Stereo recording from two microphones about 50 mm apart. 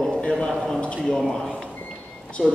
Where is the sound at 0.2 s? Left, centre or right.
Centre.